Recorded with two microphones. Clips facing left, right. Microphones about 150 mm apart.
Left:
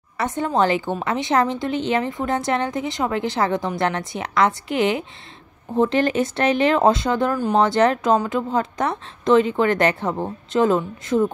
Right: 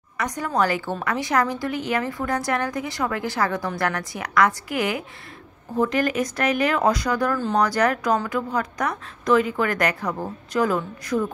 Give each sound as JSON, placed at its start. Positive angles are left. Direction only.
{"t": 0.2, "sound": "speech", "side_deg": 25}